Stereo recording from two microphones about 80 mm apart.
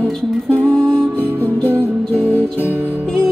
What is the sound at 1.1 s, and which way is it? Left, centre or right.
Music, right.